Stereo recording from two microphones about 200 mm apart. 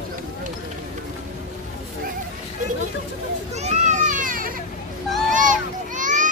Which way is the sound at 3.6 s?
35° right (ahead or behind).